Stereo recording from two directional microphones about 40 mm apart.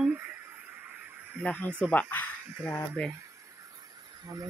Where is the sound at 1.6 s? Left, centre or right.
Left.